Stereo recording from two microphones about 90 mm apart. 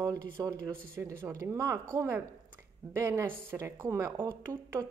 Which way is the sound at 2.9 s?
30° right (ahead or behind).